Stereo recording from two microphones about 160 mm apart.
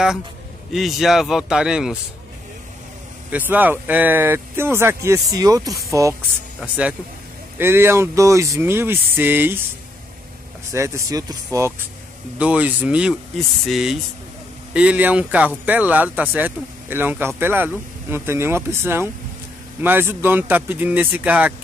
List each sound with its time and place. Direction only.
0.7 s a man's voice: centre (ahead or behind)
3.3 s speech: 10° right (ahead or behind)
6.6 s speech: 10° right (ahead or behind)
10.7 s a man's voice: 20° right (ahead or behind)